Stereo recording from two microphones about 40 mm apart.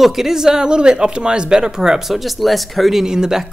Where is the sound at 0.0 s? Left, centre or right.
Centre.